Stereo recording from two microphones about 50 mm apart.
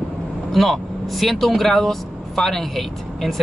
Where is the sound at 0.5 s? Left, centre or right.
Centre.